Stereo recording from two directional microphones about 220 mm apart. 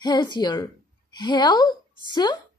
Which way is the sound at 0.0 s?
20° left (ahead or behind).